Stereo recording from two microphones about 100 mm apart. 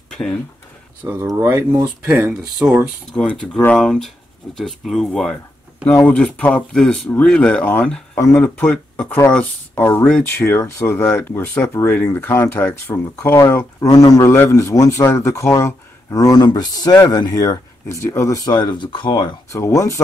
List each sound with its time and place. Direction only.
1.0 s speech: 30° right (ahead or behind)
2.0 s speech: 10° right (ahead or behind)
3.1 s speech: 10° left (ahead or behind)
10.3 s speech: 25° left (ahead or behind)
18.6 s speech: 50° left (ahead or behind)
19.5 s speech: 30° left (ahead or behind)